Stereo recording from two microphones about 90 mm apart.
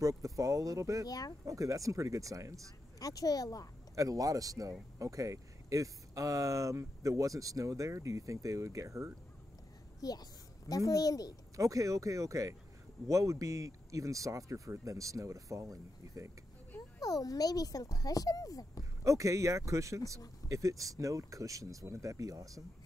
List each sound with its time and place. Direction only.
0.0 s speech: 40° right (ahead or behind)
1.0 s speech: 45° left (ahead or behind)
1.4 s speech: 35° right (ahead or behind)
3.0 s speech: 45° left (ahead or behind)
3.9 s speech: 40° right (ahead or behind)
9.9 s a child's voice: 45° left (ahead or behind)
11.5 s speech: 35° right (ahead or behind)
17.0 s speech: 40° left (ahead or behind)
19.0 s speech: 35° right (ahead or behind)